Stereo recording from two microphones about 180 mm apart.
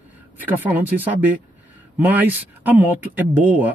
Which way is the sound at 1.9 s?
10° right (ahead or behind).